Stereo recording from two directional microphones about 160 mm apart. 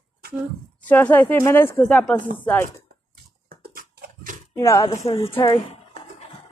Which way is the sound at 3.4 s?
70° right (ahead or behind).